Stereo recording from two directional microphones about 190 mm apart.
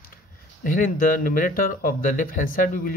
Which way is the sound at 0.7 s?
50° left (ahead or behind).